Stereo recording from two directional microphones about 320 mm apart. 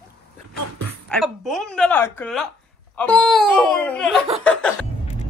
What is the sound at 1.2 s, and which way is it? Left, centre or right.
Speech, centre.